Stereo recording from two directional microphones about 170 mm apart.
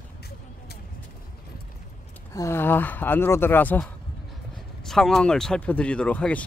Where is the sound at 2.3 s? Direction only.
15° left (ahead or behind).